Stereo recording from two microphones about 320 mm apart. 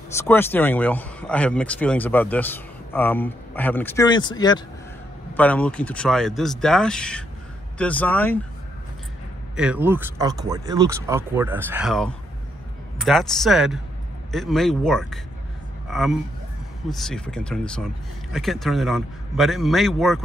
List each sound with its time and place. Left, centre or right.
0.1 s speech: centre
9.6 s a man's voice: centre